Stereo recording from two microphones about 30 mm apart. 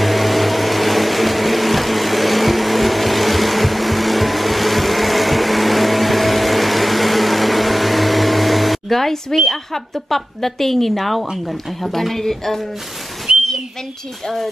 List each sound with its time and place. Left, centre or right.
0.0 s vehicle: centre
9.5 s speech: centre
13.3 s a sound: right
14.2 s speech: centre